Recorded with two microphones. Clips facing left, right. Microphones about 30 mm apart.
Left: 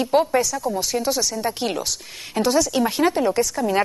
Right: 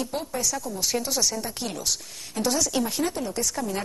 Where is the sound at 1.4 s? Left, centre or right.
Left.